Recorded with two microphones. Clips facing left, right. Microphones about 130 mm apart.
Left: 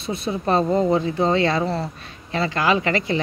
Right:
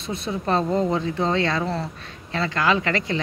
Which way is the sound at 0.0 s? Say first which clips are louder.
Left 3 dB; 5° left (ahead or behind).